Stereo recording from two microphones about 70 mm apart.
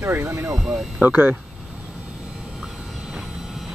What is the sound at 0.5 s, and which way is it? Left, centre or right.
Speech, centre.